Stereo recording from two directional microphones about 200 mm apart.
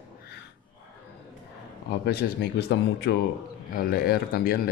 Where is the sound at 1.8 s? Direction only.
55° left (ahead or behind).